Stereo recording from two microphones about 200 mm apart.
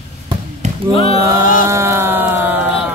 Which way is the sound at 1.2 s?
15° right (ahead or behind).